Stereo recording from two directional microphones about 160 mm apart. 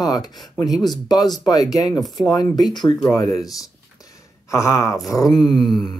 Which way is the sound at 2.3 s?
25° left (ahead or behind).